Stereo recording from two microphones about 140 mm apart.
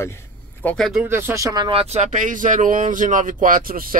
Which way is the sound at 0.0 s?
15° left (ahead or behind).